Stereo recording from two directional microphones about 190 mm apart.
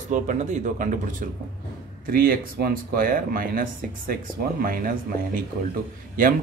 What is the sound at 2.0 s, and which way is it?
Speech, 50° right (ahead or behind).